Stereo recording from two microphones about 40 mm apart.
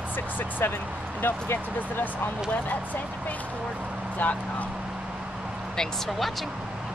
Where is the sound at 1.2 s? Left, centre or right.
Left.